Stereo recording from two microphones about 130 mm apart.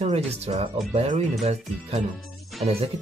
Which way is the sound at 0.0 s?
55° right (ahead or behind).